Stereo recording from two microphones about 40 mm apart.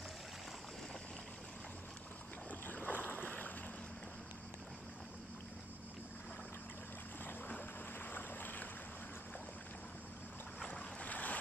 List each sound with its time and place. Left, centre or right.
2.6 s boat: left
8.0 s boat: left
11.0 s boat: left